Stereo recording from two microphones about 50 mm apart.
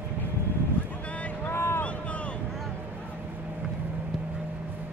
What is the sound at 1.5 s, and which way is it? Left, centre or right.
Boat, left.